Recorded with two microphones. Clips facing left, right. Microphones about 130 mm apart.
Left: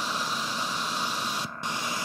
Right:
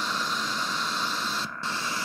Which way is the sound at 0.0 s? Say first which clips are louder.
Right 1 dB; 10° left (ahead or behind).